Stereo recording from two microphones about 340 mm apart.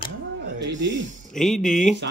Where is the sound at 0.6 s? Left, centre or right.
Right.